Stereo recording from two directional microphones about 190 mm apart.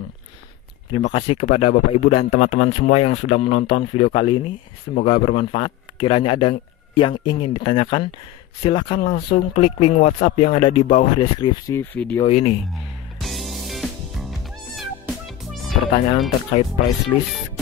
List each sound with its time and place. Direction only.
1.1 s speech: 30° left (ahead or behind); by 12.2 s 10° left (ahead or behind)
12.3 s speech: 35° left (ahead or behind)
13.2 s music: centre (ahead or behind)
17.1 s speech: 25° left (ahead or behind)